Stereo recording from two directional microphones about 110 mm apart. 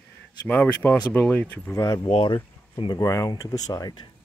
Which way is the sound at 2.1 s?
50° left (ahead or behind).